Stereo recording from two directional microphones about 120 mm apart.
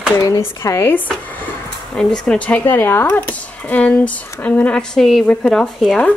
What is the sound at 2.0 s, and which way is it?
Speech, 5° left (ahead or behind).